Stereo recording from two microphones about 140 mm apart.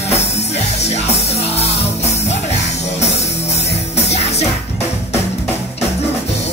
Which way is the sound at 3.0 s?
50° left (ahead or behind).